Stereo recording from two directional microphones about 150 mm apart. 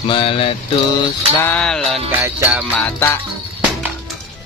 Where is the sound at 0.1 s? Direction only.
35° left (ahead or behind).